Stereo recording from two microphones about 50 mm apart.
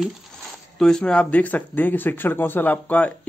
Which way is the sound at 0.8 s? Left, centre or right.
Centre.